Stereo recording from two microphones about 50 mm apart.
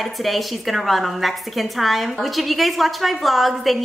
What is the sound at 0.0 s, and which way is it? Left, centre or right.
A woman's voice, centre.